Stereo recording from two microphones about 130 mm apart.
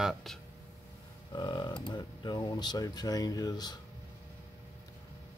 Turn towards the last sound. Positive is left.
turn(degrees=30)  # may be behind; listen again after turning